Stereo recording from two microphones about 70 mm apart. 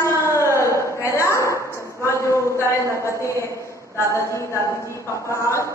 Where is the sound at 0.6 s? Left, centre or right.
Left.